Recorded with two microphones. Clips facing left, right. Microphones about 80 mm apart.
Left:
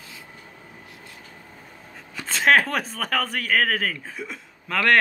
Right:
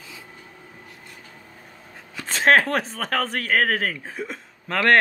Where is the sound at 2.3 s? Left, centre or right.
Right.